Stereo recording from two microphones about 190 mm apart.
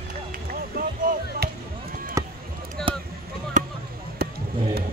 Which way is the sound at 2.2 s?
15° right (ahead or behind).